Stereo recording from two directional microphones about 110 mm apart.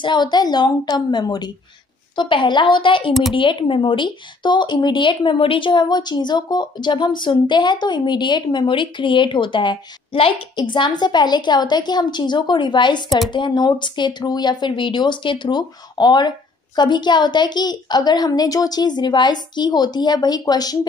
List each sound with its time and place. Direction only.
0.0 s speech: 40° left (ahead or behind)
3.1 s speech: centre (ahead or behind)
3.3 s speech: 50° left (ahead or behind)